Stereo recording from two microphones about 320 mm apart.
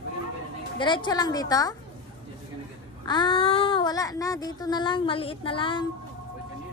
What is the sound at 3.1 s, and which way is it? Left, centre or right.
Speech, centre.